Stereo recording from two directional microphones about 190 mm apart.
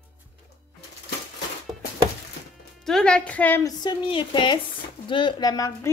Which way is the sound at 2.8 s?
5° left (ahead or behind).